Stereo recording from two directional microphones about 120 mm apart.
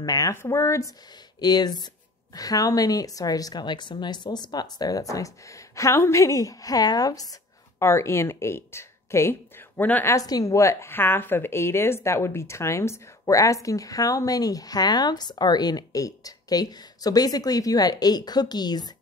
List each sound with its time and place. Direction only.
0.0 s a woman's voice: 30° left (ahead or behind)
1.4 s a woman's voice: 35° left (ahead or behind); by 10.1 s 15° left (ahead or behind)
10.1 s a woman's voice: 30° left (ahead or behind)